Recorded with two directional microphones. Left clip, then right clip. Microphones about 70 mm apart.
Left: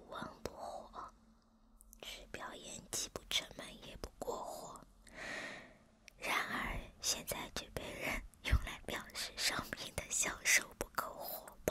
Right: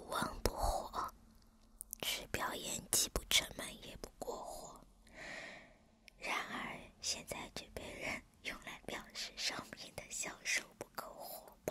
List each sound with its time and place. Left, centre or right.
0.0 s whispering: right; by 11.5 s left